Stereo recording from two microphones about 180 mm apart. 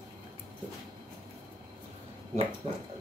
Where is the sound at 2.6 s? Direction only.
35° right (ahead or behind).